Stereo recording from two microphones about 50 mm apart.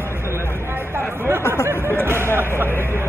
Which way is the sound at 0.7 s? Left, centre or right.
Right.